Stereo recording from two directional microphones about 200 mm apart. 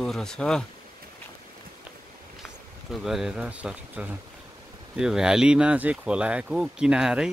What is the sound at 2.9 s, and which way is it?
Speech, centre (ahead or behind).